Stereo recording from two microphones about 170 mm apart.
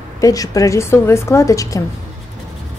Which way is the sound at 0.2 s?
20° left (ahead or behind).